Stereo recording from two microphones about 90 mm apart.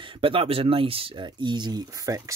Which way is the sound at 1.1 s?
55° right (ahead or behind).